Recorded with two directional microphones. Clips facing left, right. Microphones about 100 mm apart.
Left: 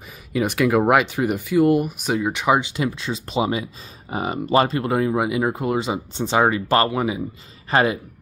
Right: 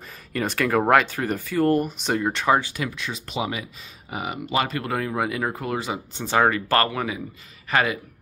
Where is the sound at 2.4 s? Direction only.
15° left (ahead or behind).